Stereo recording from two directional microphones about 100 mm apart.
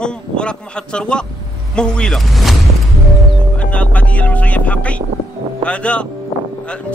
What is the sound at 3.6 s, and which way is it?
Speech, 10° left (ahead or behind).